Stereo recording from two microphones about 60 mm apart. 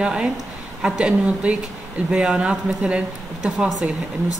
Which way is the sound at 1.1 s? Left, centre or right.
Right.